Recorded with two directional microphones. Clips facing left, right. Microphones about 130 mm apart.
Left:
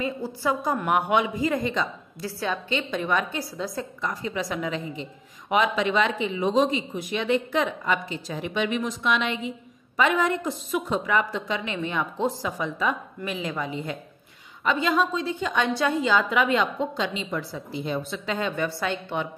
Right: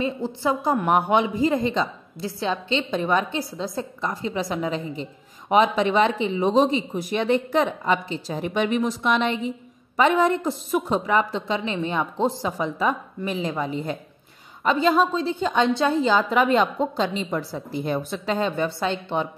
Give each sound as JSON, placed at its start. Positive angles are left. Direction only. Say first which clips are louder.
{"t": 0.0, "sound": "a woman's voice", "louder": "right 3 dB", "side_deg": -25}